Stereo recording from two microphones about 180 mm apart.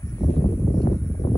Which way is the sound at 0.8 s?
30° left (ahead or behind).